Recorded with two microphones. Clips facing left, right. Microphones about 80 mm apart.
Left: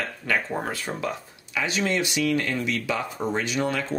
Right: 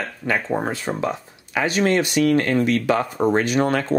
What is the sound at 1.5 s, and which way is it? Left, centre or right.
Speech, right.